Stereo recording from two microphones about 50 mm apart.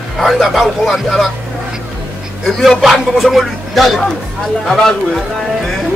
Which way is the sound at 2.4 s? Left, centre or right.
Centre.